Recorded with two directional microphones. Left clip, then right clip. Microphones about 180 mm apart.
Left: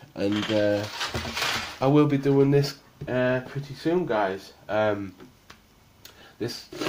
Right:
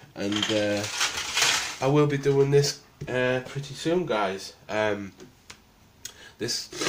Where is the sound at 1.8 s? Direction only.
50° left (ahead or behind).